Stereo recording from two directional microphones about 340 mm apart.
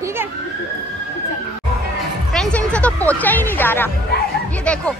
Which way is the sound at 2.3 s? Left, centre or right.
Centre.